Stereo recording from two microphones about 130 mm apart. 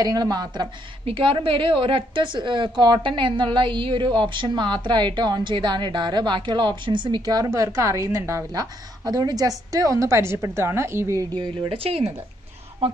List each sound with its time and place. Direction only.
0.0 s a woman's voice: 30° right (ahead or behind)
1.0 s a woman's voice: 45° right (ahead or behind); by 11.2 s 20° right (ahead or behind)
11.3 s speech: 45° right (ahead or behind)